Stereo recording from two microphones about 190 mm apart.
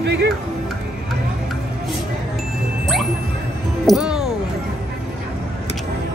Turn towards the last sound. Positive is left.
turn(degrees=-5)  # may be behind; listen again after turning